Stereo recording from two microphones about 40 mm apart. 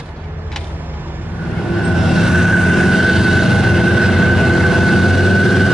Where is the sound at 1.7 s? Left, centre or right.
Centre.